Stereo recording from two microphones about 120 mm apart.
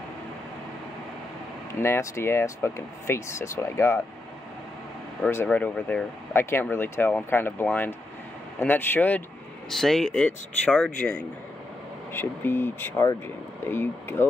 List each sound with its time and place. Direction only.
1.7 s speech: 25° left (ahead or behind)
5.3 s speech: 15° left (ahead or behind)
9.7 s speech: 5° left (ahead or behind); by 14.2 s 20° left (ahead or behind)